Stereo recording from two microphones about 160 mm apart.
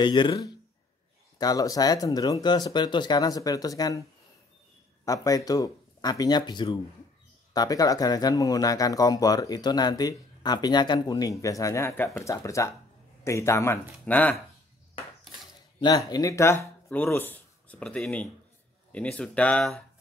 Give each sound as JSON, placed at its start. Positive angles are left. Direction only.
{"t": 0.0, "sound": "speech", "side_deg": 30}
{"t": 5.0, "sound": "speech", "side_deg": 20}
{"t": 16.1, "sound": "speech", "side_deg": 20}